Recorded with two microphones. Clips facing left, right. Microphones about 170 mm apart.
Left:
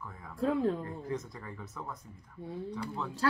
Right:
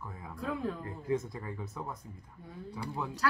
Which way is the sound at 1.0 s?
20° right (ahead or behind).